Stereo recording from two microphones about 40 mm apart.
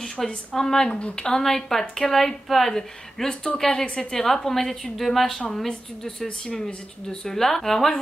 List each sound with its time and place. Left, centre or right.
0.2 s a woman's voice: centre
1.5 s a woman's voice: centre
4.5 s a woman's voice: centre
6.5 s a woman's voice: centre